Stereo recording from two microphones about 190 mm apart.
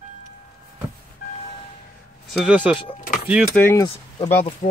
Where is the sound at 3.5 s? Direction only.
10° left (ahead or behind).